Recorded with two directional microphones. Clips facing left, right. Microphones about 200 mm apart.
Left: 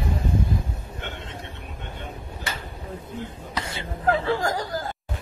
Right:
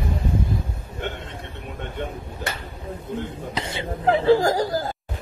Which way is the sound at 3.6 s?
25° right (ahead or behind).